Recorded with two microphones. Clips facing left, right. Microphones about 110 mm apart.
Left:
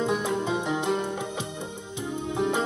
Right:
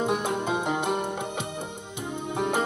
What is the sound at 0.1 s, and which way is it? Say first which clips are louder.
Music: even; 60° right (ahead or behind).